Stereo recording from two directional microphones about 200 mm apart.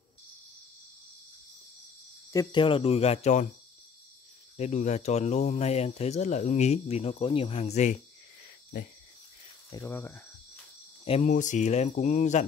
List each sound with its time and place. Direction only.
2.3 s speech: 25° left (ahead or behind)
4.6 s speech: 35° left (ahead or behind)
9.7 s cricket: 15° left (ahead or behind)
11.1 s speech: 35° left (ahead or behind)